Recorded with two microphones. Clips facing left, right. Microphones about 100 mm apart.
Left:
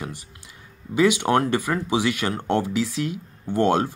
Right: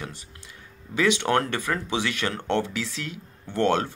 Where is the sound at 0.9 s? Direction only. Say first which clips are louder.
Left 3 dB; 10° left (ahead or behind).